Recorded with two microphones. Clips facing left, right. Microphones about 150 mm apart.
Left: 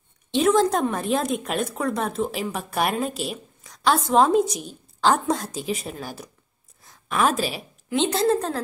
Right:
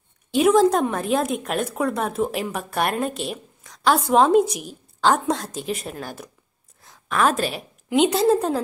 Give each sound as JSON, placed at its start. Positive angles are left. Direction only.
{"t": 0.3, "sound": "a woman's voice", "side_deg": -5}
{"t": 7.9, "sound": "a woman's voice", "side_deg": -10}